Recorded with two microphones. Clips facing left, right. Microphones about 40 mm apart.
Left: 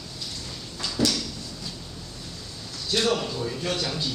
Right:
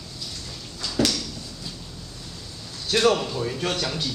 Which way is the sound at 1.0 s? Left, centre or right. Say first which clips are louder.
Right 2 dB; right.